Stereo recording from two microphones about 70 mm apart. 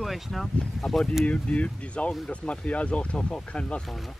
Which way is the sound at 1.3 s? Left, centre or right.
Centre.